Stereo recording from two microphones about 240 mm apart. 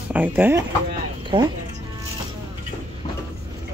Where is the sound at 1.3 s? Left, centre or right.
Centre.